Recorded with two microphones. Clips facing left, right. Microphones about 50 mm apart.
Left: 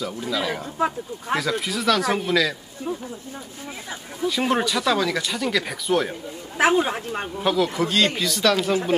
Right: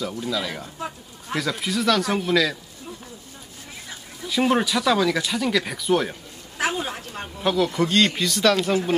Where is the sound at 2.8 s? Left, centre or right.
Left.